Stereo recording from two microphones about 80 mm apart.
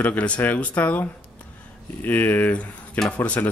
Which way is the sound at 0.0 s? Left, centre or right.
Centre.